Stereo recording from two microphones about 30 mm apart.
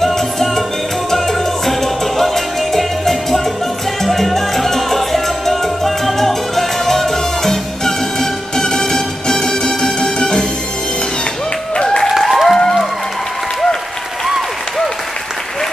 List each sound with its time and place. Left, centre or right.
0.0 s music: centre
4.0 s salsa music: centre; by 9.8 s left
10.1 s music: left
11.7 s applause: left
12.2 s applause: centre